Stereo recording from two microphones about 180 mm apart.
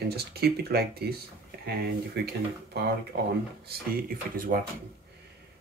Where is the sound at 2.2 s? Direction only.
65° right (ahead or behind).